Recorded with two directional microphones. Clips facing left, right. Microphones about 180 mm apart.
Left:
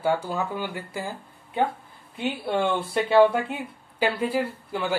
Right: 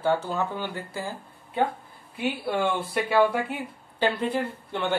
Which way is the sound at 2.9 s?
25° left (ahead or behind).